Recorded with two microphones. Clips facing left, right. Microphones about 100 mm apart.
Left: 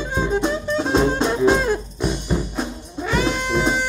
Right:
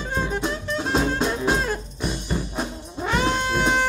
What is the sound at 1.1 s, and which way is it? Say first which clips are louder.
Music: left 5 dB; 5° right (ahead or behind).